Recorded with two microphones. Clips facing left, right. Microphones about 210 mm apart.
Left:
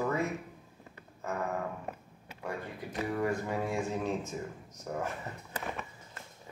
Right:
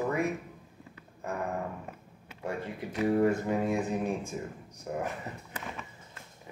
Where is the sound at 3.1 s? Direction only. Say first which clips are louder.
Right 7 dB; 25° right (ahead or behind).